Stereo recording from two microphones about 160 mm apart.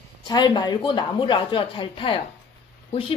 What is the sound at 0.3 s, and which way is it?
A woman's voice, 25° left (ahead or behind).